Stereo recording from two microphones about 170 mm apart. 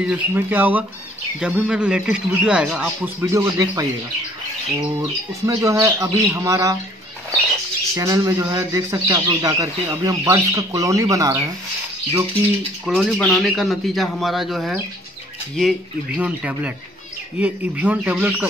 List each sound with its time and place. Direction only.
0.0 s a man's voice: 10° right (ahead or behind)
3.2 s speech: 15° right (ahead or behind)
5.5 s speech: 20° right (ahead or behind)
7.9 s speech: 20° right (ahead or behind)
12.8 s a man's voice: centre (ahead or behind)
16.2 s speech: 10° right (ahead or behind)